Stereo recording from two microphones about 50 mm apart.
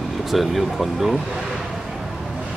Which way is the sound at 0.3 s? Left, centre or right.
Centre.